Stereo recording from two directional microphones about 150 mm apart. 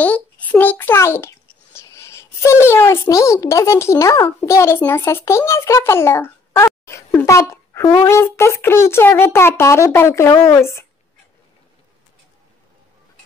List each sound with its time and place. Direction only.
0.0 s a child's voice: 10° left (ahead or behind)